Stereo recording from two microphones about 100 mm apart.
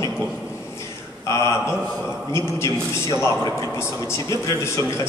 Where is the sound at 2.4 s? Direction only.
30° left (ahead or behind).